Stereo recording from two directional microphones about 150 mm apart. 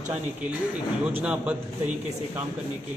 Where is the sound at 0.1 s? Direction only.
10° right (ahead or behind).